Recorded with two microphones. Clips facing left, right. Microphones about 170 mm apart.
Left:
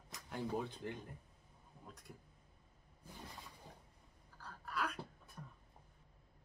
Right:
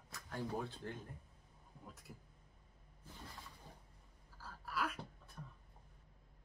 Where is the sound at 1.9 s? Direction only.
5° right (ahead or behind).